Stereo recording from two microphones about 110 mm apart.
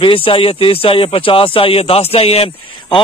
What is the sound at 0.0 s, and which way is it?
A man's voice, 55° left (ahead or behind).